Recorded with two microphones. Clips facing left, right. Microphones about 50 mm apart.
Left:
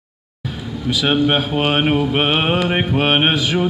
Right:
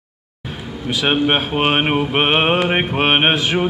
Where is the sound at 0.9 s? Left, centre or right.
Right.